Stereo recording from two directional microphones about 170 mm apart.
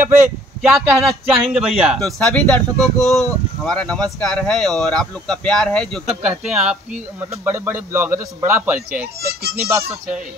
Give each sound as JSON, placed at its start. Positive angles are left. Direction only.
{"t": 0.0, "sound": "speech", "side_deg": -15}
{"t": 0.6, "sound": "a man's voice", "side_deg": 0}